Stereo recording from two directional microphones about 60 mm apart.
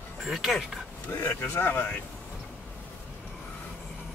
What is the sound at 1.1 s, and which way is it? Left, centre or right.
Speech, left.